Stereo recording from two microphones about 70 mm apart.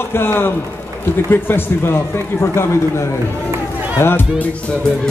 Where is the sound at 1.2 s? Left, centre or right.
Left.